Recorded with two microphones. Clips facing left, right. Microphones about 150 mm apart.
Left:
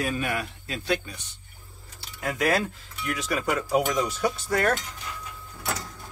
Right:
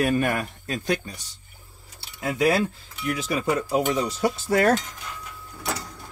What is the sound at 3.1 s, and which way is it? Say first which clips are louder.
Speech: right 2 dB; 30° right (ahead or behind).